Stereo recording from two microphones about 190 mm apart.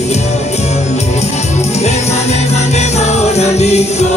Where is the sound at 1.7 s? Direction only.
35° left (ahead or behind).